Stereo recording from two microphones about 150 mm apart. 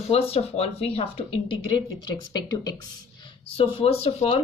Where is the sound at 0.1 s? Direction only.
40° left (ahead or behind).